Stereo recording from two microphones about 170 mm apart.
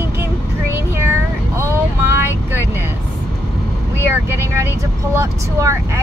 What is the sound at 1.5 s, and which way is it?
Vehicle, 15° right (ahead or behind).